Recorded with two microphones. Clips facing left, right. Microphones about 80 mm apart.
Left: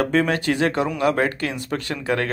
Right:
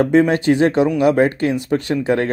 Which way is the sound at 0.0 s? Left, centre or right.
Right.